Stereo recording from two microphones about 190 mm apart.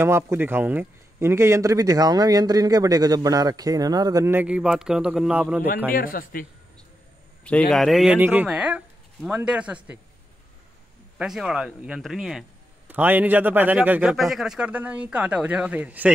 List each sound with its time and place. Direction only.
0.0 s a man's voice: 15° right (ahead or behind)
5.9 s a man's voice: 50° left (ahead or behind)
7.7 s a man's voice: centre (ahead or behind)
11.1 s a man's voice: centre (ahead or behind)